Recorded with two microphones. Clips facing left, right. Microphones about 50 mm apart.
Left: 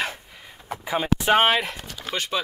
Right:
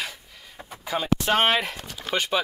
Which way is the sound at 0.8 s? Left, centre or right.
Centre.